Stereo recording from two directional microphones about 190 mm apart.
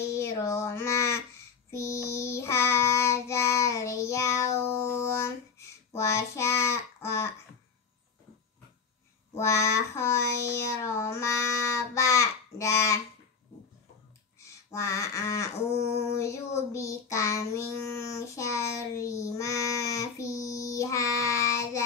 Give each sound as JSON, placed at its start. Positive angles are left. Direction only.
{"t": 0.0, "sound": "child singing", "side_deg": 15}
{"t": 9.3, "sound": "child singing", "side_deg": 15}
{"t": 14.4, "sound": "a sound", "side_deg": 15}